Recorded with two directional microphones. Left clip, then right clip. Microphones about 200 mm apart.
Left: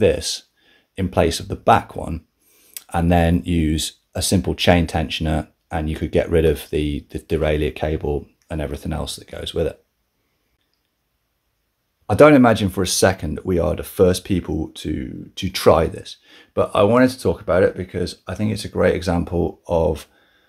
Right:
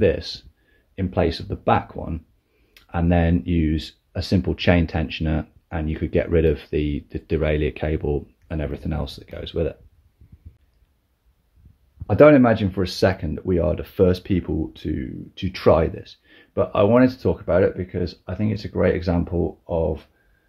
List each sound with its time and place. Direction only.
0.0 s speech: 15° left (ahead or behind)
12.1 s speech: 10° left (ahead or behind)
19.3 s speech: 25° left (ahead or behind)